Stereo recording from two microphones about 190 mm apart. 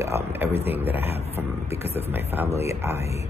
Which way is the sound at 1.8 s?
10° right (ahead or behind).